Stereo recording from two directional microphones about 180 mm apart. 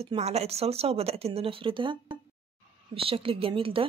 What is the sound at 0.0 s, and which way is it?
A woman's voice, 35° right (ahead or behind).